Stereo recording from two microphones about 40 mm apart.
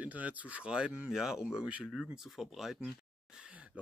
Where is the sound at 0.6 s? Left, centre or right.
Right; by 2.9 s centre.